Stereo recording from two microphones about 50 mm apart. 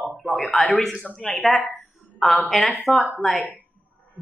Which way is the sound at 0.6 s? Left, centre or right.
Centre.